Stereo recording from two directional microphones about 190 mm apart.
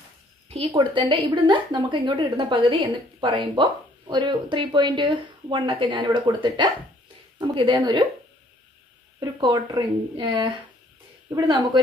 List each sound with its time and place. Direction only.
0.5 s a woman's voice: 30° right (ahead or behind)
9.2 s a woman's voice: 25° right (ahead or behind)